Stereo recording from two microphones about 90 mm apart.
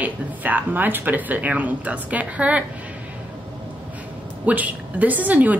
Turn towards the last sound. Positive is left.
turn(degrees=-15)  # may be behind; listen again after turning